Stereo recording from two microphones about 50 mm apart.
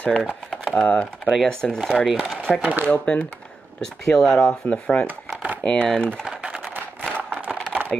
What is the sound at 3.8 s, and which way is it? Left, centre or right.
Speech, centre.